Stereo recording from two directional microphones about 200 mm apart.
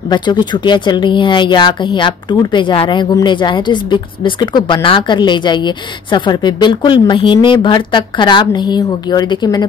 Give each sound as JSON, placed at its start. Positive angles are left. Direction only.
{"t": 0.1, "sound": "speech", "side_deg": 20}